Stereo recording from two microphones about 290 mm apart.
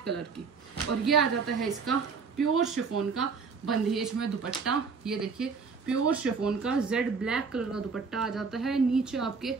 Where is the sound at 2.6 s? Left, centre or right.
Right.